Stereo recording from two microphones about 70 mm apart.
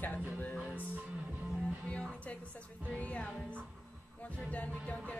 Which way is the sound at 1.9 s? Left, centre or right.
Centre.